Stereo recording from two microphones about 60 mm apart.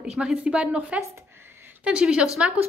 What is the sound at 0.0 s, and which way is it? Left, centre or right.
A woman's voice, centre.